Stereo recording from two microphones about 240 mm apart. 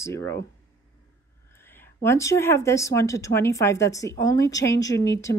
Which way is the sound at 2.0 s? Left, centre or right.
Centre.